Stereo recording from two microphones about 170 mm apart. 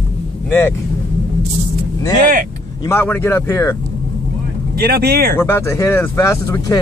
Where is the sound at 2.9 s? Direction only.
15° left (ahead or behind).